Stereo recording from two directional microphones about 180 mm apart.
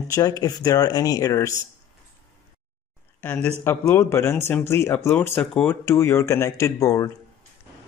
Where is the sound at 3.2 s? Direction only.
5° left (ahead or behind).